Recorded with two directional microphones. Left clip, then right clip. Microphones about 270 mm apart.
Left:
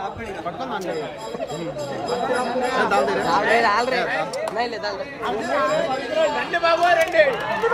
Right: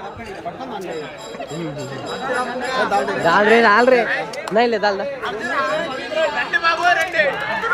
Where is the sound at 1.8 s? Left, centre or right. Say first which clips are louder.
Left 2 dB; left.